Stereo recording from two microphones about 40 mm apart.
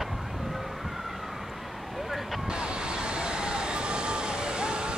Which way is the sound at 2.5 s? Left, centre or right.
Right.